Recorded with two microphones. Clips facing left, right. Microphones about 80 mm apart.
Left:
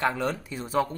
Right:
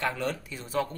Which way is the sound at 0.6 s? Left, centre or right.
Centre.